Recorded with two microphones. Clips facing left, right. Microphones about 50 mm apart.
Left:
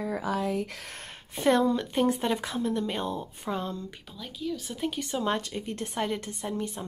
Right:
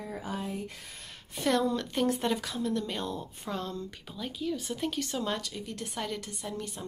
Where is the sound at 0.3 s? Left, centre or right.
Left.